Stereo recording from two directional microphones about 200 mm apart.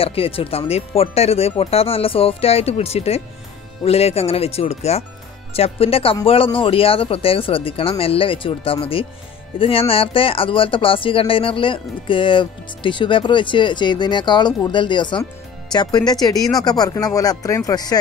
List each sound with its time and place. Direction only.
0.0 s speech: 30° left (ahead or behind)